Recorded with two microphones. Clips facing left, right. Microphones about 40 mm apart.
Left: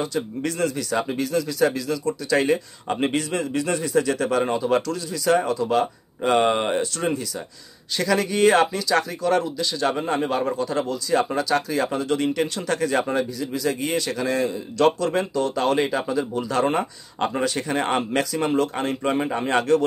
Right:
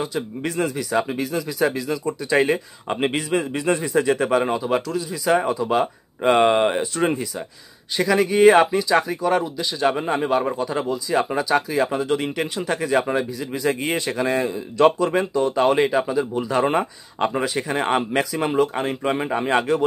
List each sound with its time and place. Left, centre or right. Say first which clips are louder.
0.0 s speech: even; centre
7.0 s speech: right 3 dB; right